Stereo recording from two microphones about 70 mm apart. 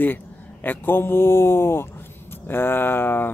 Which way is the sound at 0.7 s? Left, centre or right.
Left.